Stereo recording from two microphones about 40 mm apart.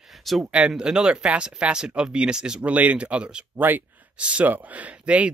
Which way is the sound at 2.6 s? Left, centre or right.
Right.